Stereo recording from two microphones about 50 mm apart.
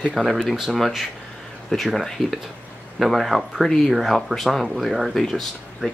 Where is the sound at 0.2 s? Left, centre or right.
Centre.